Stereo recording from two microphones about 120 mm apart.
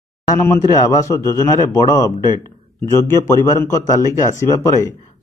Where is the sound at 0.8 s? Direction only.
25° left (ahead or behind).